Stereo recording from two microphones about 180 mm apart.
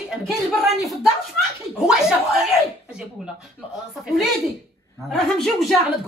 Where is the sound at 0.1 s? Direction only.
Centre (ahead or behind).